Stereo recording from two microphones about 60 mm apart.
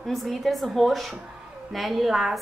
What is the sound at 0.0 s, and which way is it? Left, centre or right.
A woman's voice, centre.